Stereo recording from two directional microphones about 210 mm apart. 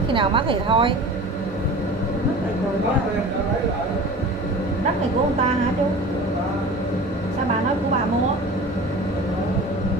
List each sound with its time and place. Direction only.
0.1 s a woman's voice: 25° right (ahead or behind)